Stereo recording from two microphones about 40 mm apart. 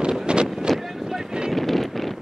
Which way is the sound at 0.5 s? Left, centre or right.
Centre.